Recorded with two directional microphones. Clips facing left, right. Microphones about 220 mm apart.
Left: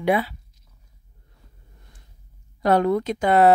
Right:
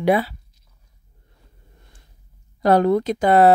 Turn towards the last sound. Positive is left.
turn(degrees=-35)  # may be behind; listen again after turning